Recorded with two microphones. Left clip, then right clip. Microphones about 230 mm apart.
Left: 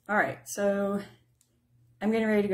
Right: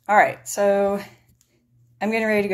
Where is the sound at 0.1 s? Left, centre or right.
Right.